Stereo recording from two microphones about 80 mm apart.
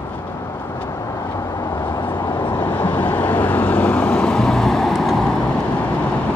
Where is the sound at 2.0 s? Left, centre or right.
Left.